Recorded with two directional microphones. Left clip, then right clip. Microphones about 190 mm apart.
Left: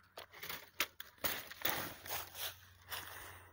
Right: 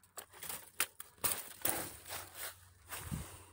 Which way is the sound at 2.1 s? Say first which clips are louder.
Left 2 dB; 50° left (ahead or behind).